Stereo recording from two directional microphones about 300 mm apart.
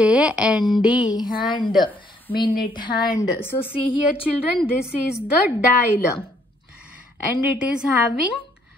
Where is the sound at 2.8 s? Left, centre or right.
Centre.